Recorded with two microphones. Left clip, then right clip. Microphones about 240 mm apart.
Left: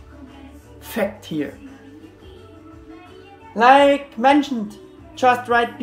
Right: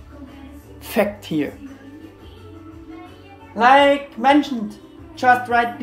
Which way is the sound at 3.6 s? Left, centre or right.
Centre.